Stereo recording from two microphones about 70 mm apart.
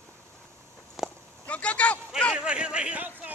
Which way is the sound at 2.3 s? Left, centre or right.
Centre.